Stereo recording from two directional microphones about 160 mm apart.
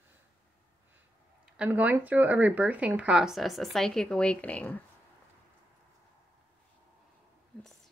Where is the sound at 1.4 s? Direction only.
10° right (ahead or behind); by 4.8 s 10° left (ahead or behind).